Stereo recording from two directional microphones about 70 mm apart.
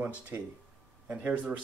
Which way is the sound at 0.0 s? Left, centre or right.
Right.